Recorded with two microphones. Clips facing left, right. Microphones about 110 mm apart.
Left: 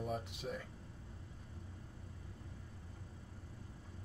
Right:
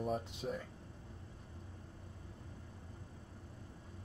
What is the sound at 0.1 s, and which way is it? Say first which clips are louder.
Speech: right 3 dB; 25° right (ahead or behind).